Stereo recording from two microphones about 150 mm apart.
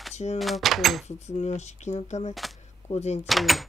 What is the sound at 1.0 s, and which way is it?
Speech, 50° left (ahead or behind).